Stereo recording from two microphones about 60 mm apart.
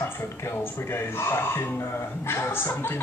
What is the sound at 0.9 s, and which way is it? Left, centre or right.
Speech, left.